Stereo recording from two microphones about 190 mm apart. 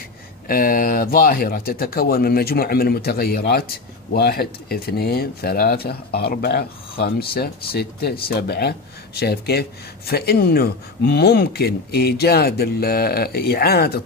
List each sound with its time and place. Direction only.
0.5 s speech: 50° left (ahead or behind)